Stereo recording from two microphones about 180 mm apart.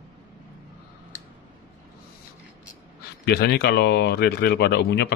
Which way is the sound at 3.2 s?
65° left (ahead or behind).